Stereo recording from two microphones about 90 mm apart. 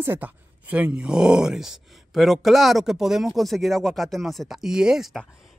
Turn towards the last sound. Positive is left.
turn(degrees=-5)  # may be behind; listen again after turning